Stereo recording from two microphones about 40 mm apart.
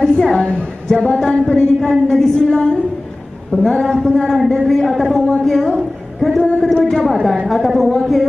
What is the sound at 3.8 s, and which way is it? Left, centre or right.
A woman's voice, centre.